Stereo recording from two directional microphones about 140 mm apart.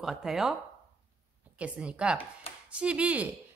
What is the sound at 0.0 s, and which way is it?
Speech, 5° right (ahead or behind).